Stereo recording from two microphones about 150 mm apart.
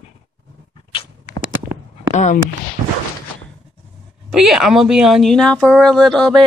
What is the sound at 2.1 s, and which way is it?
Speech, 55° left (ahead or behind).